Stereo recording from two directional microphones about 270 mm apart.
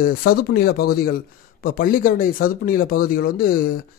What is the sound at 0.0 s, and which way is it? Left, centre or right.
Speech, left.